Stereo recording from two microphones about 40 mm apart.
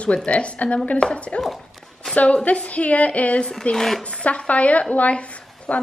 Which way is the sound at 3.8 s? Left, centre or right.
Centre.